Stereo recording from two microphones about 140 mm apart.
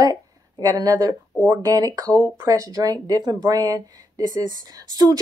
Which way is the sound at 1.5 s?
30° right (ahead or behind).